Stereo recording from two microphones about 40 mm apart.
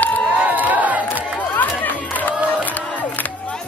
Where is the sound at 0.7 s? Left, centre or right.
Right.